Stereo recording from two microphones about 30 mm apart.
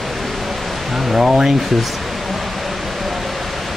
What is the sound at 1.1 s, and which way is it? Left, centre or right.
Speech, right.